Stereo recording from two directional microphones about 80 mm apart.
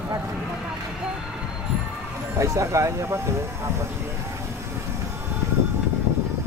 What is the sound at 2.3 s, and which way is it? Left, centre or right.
Speech, right.